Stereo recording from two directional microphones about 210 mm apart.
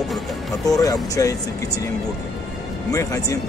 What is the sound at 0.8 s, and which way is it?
Speech, 15° left (ahead or behind).